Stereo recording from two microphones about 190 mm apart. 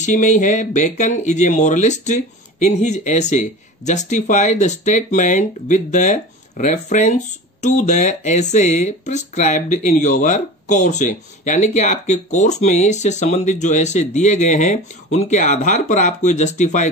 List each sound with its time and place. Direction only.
0.0 s speech: 40° left (ahead or behind)